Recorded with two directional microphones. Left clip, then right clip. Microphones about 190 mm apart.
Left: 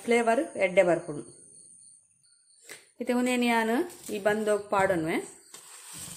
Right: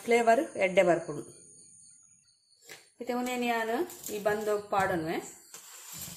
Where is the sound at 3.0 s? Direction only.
45° left (ahead or behind).